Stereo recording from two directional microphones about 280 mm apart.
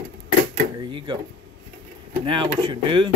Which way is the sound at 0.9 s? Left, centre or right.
Centre.